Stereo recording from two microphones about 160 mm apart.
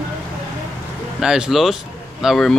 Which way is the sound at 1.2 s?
5° right (ahead or behind).